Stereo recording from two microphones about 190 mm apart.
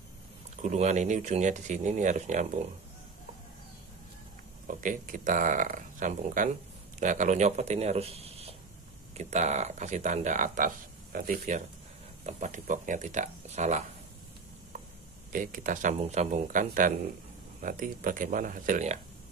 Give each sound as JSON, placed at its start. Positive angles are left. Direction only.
{"t": 0.6, "sound": "speech", "side_deg": -35}
{"t": 4.6, "sound": "speech", "side_deg": -45}
{"t": 15.3, "sound": "speech", "side_deg": -45}